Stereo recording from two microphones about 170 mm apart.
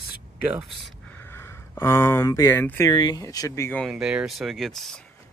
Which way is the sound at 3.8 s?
5° right (ahead or behind).